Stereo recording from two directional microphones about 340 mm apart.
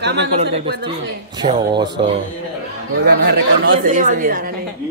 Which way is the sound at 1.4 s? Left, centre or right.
Centre.